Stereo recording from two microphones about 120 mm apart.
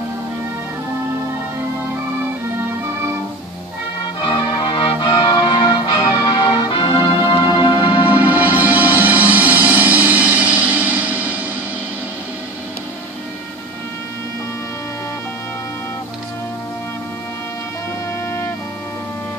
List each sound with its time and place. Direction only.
4.3 s music: 45° left (ahead or behind)
8.0 s music: 15° right (ahead or behind)